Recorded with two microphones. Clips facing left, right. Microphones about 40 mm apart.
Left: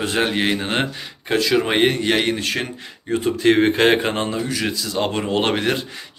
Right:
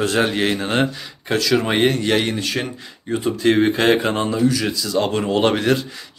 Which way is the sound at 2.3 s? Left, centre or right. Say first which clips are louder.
Even; left.